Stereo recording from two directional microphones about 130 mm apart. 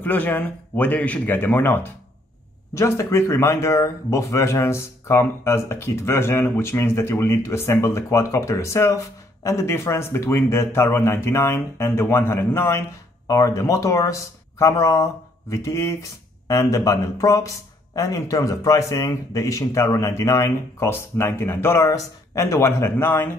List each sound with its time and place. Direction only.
0.0 s speech: 15° left (ahead or behind)